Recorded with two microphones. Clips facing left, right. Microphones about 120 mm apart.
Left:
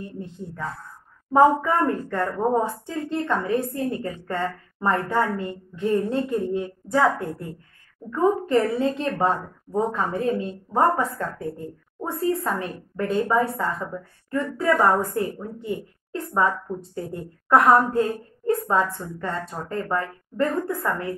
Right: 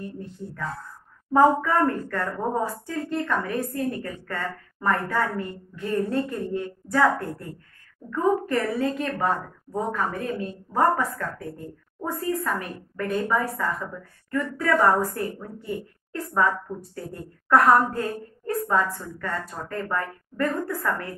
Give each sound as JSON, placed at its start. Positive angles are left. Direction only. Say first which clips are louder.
{"t": 0.0, "sound": "a woman's voice", "louder": "left 1 dB", "side_deg": 20}